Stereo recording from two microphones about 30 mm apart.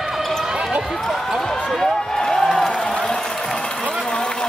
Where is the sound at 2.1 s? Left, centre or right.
Centre.